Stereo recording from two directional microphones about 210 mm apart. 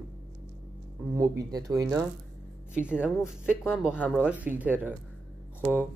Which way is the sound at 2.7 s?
5° right (ahead or behind).